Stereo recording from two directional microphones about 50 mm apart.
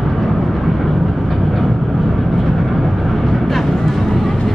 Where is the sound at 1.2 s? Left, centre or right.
Centre.